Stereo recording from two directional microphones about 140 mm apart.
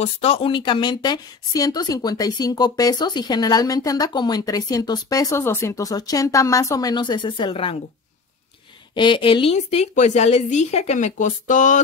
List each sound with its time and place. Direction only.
0.0 s a woman's voice: 45° left (ahead or behind)
8.9 s a woman's voice: 35° left (ahead or behind); by 11.8 s 65° left (ahead or behind)